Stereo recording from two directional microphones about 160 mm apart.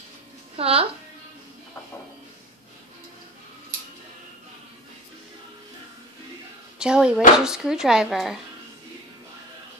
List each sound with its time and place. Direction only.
0.6 s a woman's voice: 40° right (ahead or behind)
6.8 s speech: 5° right (ahead or behind)